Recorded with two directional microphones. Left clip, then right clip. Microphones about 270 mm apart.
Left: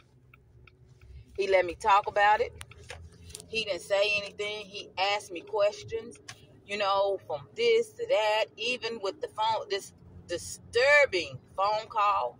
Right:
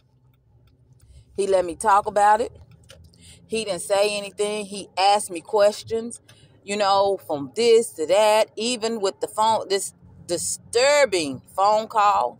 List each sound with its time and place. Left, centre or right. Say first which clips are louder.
1.3 s speech: right 5 dB; right
3.8 s speech: right 6 dB; right